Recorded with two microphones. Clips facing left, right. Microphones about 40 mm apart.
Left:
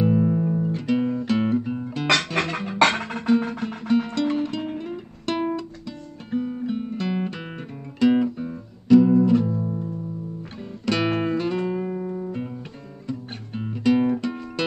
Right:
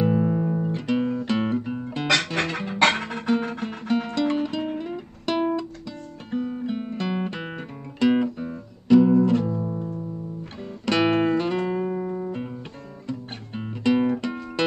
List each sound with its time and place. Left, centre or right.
0.0 s music: centre
2.4 s music: right
3.3 s guitar: centre
9.6 s music: centre
10.9 s guitar: centre
11.2 s music: centre